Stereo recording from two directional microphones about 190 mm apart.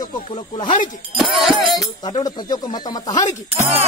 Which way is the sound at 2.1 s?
20° left (ahead or behind).